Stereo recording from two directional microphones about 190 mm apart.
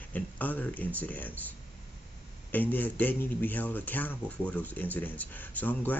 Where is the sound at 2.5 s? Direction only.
10° left (ahead or behind).